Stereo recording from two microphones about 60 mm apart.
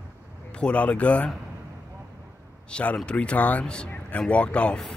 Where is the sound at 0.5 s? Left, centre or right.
Centre.